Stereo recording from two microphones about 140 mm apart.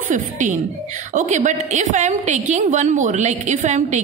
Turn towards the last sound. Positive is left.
turn(degrees=-55)  # may be behind; listen again after turning